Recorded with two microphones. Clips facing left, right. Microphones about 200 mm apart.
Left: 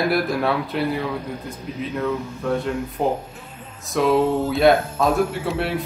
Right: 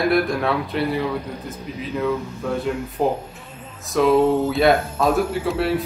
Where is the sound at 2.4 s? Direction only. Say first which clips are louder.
Left 1 dB; 5° right (ahead or behind).